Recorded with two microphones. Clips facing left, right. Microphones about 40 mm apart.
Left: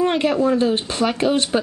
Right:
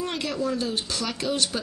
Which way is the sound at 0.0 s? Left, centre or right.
Left.